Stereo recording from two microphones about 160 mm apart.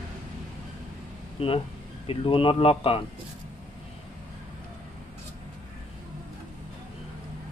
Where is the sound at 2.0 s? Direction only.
35° left (ahead or behind).